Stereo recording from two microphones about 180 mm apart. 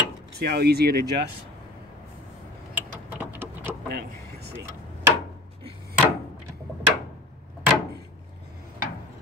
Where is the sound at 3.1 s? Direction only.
10° right (ahead or behind).